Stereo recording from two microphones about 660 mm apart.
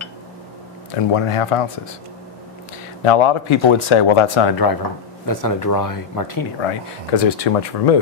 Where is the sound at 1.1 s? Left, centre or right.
Left.